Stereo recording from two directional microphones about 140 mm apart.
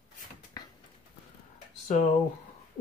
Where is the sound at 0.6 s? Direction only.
30° left (ahead or behind).